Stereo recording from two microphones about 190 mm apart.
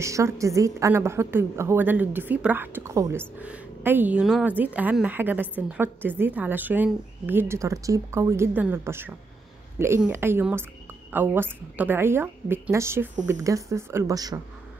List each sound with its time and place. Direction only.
0.0 s a woman's voice: 15° right (ahead or behind)